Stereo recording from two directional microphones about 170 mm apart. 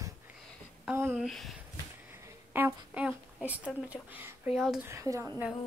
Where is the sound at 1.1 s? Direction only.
Centre (ahead or behind).